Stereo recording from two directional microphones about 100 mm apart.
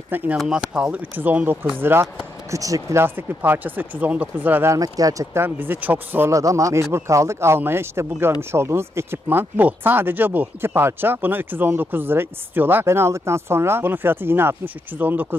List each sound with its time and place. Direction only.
0.4 s speech: 5° right (ahead or behind)
2.5 s speech: 35° right (ahead or behind)
4.7 s speech: 40° right (ahead or behind)
5.4 s speech: 20° right (ahead or behind)
6.3 s speech: 30° right (ahead or behind)